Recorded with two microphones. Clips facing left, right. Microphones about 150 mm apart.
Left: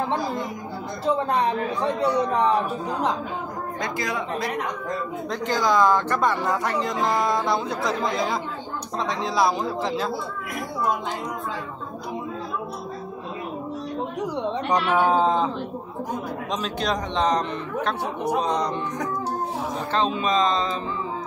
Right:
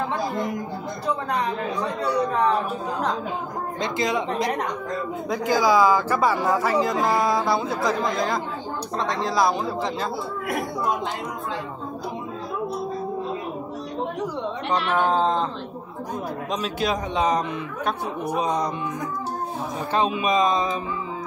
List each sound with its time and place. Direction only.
1.0 s speech: 30° left (ahead or behind)
3.8 s speech: 20° right (ahead or behind)
5.3 s speech: 10° right (ahead or behind)
14.7 s speech: 10° left (ahead or behind)
16.6 s speech: 5° right (ahead or behind)
18.4 s speech: 10° right (ahead or behind)
19.9 s speech: 10° right (ahead or behind)